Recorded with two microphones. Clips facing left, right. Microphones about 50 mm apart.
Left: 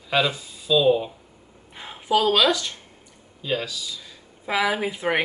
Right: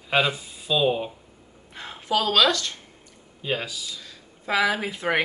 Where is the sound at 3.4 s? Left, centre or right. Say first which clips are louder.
Left 1 dB; centre.